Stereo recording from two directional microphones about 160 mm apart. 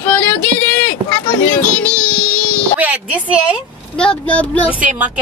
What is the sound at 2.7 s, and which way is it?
Speech, 10° right (ahead or behind).